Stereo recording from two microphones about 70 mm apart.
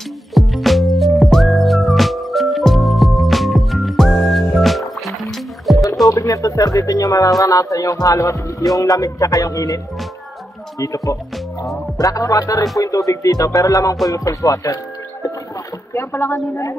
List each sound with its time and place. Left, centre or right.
0.3 s music: centre
6.0 s speech: left
8.7 s music: left
10.8 s speech: left
15.9 s speech: left